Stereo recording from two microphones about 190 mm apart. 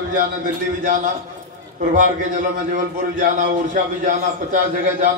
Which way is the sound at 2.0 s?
40° right (ahead or behind).